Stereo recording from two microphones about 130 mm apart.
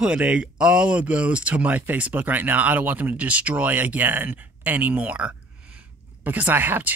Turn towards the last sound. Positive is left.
turn(degrees=-15)  # may be behind; listen again after turning